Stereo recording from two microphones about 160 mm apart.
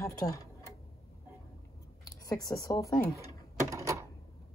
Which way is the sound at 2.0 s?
20° left (ahead or behind).